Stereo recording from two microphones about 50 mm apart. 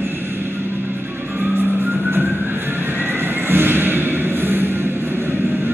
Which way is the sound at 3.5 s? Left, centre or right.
Right.